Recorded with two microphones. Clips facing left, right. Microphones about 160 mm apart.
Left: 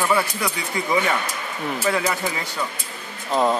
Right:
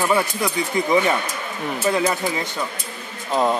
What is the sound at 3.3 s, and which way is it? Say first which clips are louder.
Speech: even; centre (ahead or behind).